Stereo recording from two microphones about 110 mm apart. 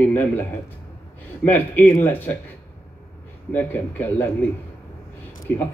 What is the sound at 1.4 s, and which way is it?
Speech, 15° left (ahead or behind).